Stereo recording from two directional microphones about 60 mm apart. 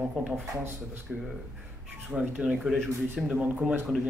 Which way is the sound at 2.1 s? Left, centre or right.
Centre.